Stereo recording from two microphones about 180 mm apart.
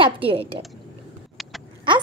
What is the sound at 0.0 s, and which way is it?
Speech, 30° right (ahead or behind).